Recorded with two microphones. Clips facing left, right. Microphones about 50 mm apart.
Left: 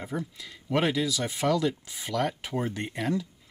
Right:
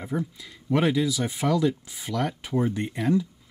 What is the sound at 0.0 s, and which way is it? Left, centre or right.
Speech, centre.